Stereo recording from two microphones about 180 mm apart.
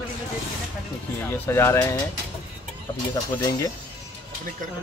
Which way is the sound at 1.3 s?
15° left (ahead or behind).